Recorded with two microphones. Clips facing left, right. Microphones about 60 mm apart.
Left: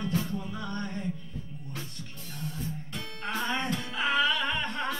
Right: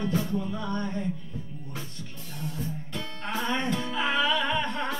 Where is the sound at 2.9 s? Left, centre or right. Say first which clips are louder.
Right 1 dB; centre.